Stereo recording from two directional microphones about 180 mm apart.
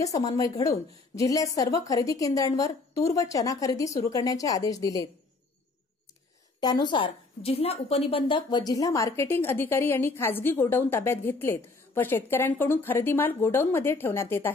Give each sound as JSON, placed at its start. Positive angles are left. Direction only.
{"t": 0.0, "sound": "a woman's voice", "side_deg": 20}
{"t": 6.6, "sound": "a woman's voice", "side_deg": 25}